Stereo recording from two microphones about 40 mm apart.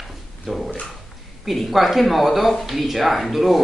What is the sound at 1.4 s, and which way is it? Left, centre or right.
Speech, centre.